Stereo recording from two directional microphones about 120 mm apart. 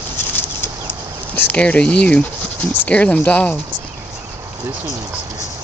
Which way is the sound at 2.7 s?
10° left (ahead or behind).